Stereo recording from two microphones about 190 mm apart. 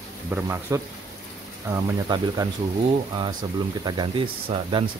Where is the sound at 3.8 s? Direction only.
25° right (ahead or behind).